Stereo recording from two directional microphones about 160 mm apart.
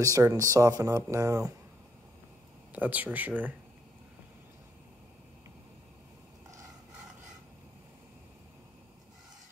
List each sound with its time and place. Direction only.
0.0 s speech: 20° right (ahead or behind)
2.7 s speech: 10° right (ahead or behind)